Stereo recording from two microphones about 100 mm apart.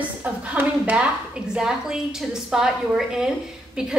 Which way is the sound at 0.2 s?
15° right (ahead or behind).